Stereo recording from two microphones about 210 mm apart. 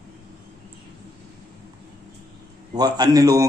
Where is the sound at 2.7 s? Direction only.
20° right (ahead or behind).